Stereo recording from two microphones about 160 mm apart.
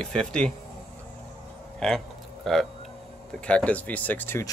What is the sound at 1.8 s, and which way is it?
Speech, 5° left (ahead or behind).